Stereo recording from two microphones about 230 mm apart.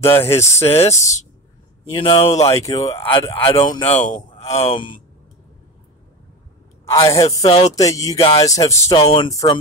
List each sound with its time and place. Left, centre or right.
0.4 s music: centre
2.0 s speech: left
2.6 s speech: centre
7.0 s music: centre
8.9 s speech: left